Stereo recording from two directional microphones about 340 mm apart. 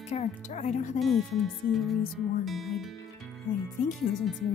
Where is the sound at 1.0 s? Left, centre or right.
Centre.